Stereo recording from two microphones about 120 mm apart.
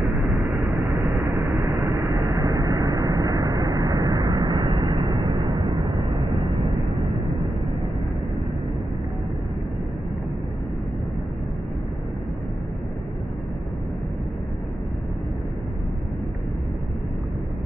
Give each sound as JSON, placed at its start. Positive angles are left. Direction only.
{"t": 1.2, "sound": "vehicle", "side_deg": 0}
{"t": 1.9, "sound": "vehicle", "side_deg": -30}